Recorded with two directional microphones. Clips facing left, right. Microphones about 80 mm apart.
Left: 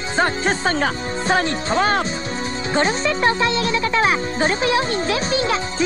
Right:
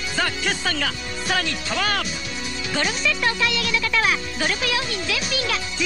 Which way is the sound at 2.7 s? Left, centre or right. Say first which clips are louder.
Left 5 dB; left.